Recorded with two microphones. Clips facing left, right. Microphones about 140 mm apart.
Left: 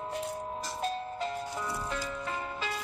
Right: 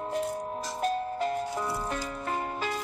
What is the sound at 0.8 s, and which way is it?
Music, 55° right (ahead or behind).